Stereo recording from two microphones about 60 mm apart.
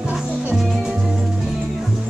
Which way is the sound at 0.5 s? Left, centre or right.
Centre.